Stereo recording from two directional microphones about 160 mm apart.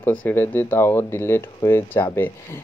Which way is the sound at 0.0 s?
10° left (ahead or behind).